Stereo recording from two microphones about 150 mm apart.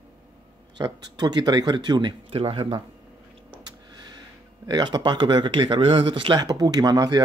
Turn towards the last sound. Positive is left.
turn(degrees=-25)  # may be behind; listen again after turning